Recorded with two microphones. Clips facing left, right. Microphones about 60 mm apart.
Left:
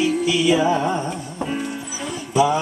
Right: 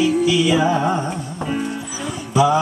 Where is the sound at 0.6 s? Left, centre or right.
Centre.